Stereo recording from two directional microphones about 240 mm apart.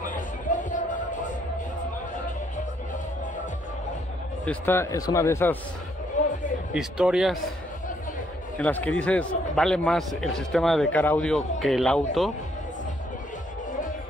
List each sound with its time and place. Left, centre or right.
4.5 s a man's voice: centre
6.2 s music: left
6.7 s a man's voice: centre
8.5 s a man's voice: centre